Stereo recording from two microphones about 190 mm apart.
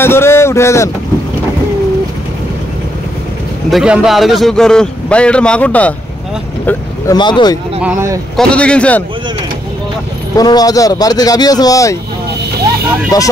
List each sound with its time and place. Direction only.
0.0 s speech: 10° left (ahead or behind)
3.7 s a man's voice: 5° right (ahead or behind)
7.2 s speech: 25° left (ahead or behind)
7.8 s speech: 15° right (ahead or behind)
8.4 s a man's voice: 5° left (ahead or behind)
10.3 s speech: 20° left (ahead or behind)
13.1 s speech: 20° left (ahead or behind)